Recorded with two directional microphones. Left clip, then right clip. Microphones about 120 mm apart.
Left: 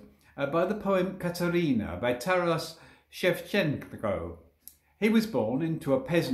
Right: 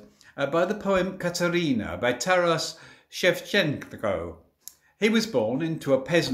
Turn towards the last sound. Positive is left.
turn(degrees=-30)  # may be behind; listen again after turning